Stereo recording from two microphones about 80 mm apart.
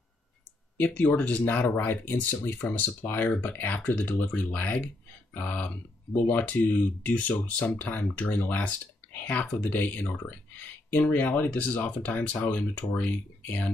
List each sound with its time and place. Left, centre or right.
0.7 s speech: centre